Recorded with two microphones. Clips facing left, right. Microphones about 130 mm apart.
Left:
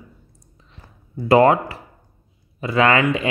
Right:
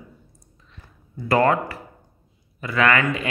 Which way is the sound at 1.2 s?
25° left (ahead or behind).